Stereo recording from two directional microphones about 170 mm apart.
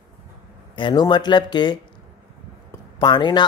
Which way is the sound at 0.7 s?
25° left (ahead or behind).